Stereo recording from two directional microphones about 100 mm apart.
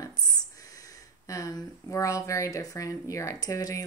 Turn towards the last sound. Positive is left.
turn(degrees=35)  # may be behind; listen again after turning